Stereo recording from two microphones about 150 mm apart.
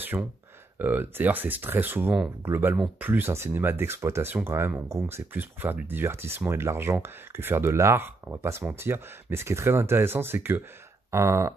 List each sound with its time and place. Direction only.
0.1 s speech: 15° right (ahead or behind)